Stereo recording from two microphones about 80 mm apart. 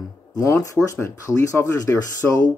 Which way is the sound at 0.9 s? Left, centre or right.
Left.